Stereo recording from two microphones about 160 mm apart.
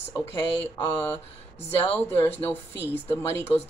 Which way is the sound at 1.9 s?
15° left (ahead or behind).